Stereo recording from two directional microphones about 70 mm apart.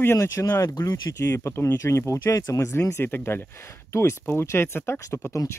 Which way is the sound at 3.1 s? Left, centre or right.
Left.